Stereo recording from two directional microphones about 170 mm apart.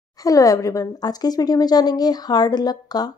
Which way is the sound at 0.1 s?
20° left (ahead or behind).